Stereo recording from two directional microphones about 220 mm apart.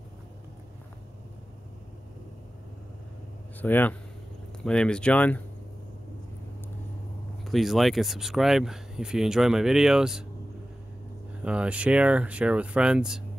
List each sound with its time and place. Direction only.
3.6 s speech: 10° left (ahead or behind)
7.4 s speech: centre (ahead or behind)
11.4 s speech: 5° right (ahead or behind)